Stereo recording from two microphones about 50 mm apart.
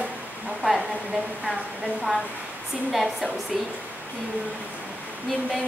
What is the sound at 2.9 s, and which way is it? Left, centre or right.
Speech, centre.